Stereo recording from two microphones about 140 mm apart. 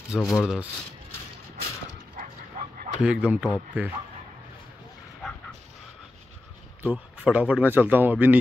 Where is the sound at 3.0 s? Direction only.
10° right (ahead or behind).